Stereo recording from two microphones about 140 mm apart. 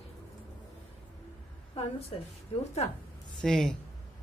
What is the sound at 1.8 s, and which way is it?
Speech, 45° left (ahead or behind).